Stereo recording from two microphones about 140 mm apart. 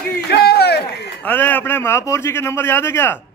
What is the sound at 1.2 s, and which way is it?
A man's voice, 15° left (ahead or behind).